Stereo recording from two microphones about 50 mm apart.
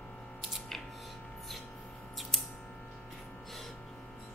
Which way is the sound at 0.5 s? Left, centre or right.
Centre.